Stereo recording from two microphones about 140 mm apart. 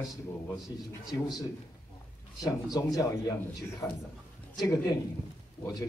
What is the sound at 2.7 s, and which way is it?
A man's voice, 25° left (ahead or behind).